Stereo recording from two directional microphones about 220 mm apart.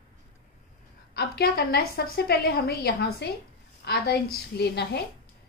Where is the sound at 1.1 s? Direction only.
45° left (ahead or behind).